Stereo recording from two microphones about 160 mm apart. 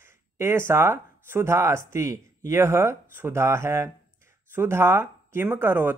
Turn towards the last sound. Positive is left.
turn(degrees=-15)  # may be behind; listen again after turning